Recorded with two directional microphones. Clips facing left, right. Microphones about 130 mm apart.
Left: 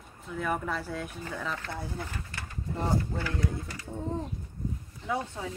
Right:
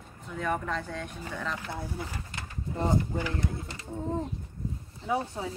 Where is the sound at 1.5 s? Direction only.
10° right (ahead or behind).